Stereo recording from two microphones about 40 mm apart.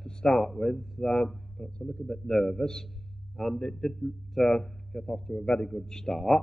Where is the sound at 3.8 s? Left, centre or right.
Centre.